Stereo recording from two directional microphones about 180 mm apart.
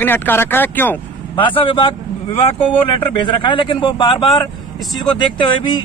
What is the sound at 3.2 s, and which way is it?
Speech, 25° left (ahead or behind).